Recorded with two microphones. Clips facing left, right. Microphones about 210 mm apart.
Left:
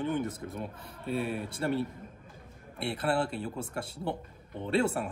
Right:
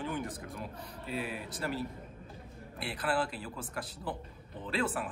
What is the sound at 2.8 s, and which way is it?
A man's voice, 25° left (ahead or behind).